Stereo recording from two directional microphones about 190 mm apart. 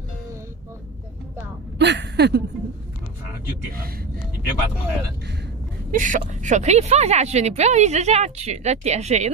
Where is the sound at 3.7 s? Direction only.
50° right (ahead or behind).